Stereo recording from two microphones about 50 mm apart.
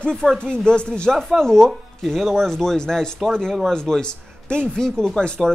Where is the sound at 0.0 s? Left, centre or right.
Centre.